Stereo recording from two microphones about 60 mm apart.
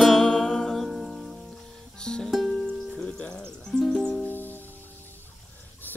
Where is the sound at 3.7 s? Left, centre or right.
Centre.